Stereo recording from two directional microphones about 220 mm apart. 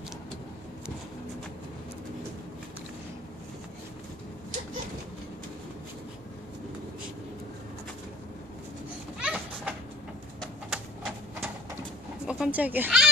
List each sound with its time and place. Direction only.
9.2 s a sound: 5° right (ahead or behind)
10.7 s typewriter: 5° right (ahead or behind)
12.3 s cat: 5° right (ahead or behind)